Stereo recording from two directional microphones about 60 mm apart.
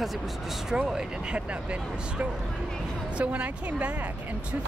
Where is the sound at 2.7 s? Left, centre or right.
Centre.